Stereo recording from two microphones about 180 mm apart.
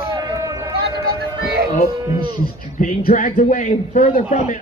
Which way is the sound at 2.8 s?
45° left (ahead or behind).